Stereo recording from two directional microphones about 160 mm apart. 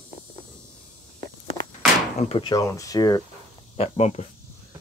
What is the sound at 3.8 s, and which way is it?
Speech, 40° left (ahead or behind).